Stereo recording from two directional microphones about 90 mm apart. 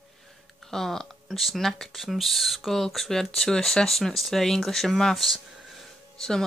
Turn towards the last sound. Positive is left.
turn(degrees=5)  # may be behind; listen again after turning